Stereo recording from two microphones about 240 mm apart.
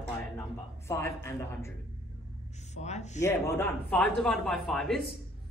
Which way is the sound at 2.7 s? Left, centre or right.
Left.